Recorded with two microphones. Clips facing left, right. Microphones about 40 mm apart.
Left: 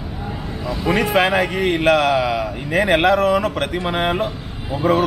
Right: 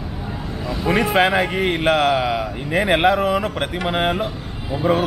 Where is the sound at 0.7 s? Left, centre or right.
Centre.